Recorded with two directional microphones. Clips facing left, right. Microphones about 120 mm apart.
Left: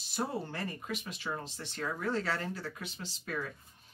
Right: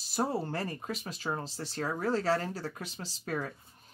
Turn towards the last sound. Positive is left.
turn(degrees=-40)  # may be behind; listen again after turning